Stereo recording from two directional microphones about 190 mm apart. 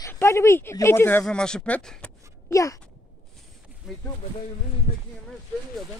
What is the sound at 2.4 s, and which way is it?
Speech, 15° left (ahead or behind).